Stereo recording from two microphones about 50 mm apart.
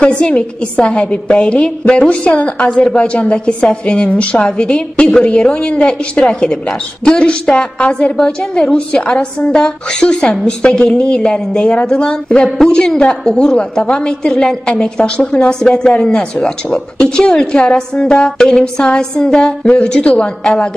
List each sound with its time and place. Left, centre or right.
0.0 s a woman's voice: left